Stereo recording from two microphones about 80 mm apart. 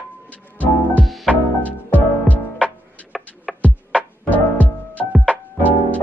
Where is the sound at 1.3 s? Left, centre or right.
Centre.